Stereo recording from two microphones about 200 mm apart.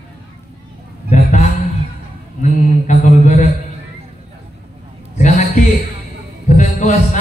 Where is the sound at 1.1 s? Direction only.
35° left (ahead or behind).